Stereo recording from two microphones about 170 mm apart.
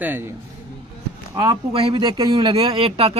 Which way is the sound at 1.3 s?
20° right (ahead or behind).